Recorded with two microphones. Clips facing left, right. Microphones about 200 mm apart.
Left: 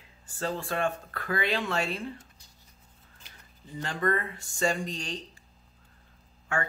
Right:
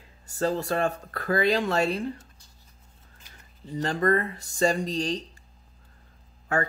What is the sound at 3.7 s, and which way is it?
Speech, 40° right (ahead or behind).